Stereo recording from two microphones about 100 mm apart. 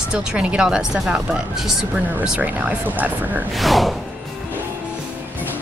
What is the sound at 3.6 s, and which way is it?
Speech, centre (ahead or behind).